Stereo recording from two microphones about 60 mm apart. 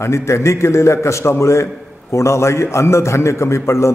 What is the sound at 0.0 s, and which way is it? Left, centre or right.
A man's voice, left.